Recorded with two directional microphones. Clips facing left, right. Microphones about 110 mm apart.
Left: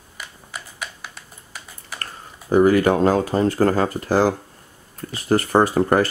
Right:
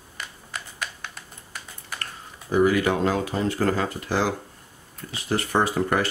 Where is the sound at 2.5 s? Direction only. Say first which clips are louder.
Left 5 dB; 45° left (ahead or behind).